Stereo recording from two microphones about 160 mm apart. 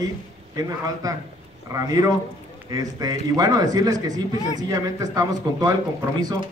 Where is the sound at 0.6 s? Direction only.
20° right (ahead or behind).